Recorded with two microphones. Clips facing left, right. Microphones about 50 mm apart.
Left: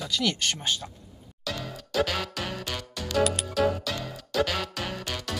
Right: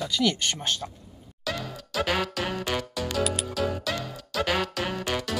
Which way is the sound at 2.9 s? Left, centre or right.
Centre.